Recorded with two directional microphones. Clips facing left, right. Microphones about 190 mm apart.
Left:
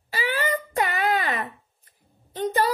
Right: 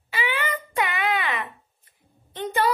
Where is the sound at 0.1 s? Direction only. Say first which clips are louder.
Left 2 dB; 40° left (ahead or behind).